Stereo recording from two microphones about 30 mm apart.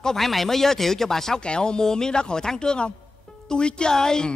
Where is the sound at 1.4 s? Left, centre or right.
Left.